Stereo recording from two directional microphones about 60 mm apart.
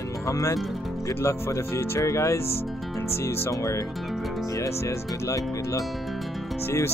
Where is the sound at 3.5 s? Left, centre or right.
Left.